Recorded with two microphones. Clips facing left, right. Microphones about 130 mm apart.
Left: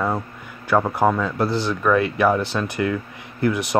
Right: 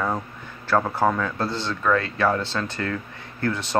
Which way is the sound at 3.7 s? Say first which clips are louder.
Left 3 dB; 15° left (ahead or behind).